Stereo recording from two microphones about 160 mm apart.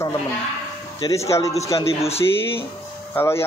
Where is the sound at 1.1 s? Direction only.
20° left (ahead or behind).